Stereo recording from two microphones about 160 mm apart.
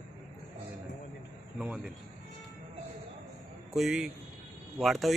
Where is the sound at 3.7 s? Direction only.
5° right (ahead or behind).